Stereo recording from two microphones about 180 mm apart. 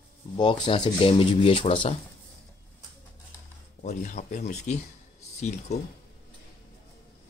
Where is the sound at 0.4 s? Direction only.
25° left (ahead or behind).